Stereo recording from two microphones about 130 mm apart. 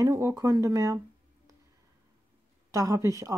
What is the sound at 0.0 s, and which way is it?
Speech, 25° right (ahead or behind).